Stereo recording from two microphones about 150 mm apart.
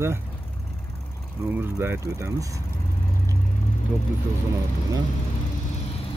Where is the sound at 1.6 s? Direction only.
15° right (ahead or behind).